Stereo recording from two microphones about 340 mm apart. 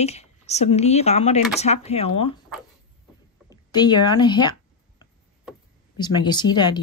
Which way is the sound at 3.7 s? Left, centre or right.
Centre.